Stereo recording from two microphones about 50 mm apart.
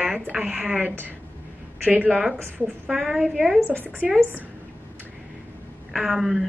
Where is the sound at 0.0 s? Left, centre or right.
Centre.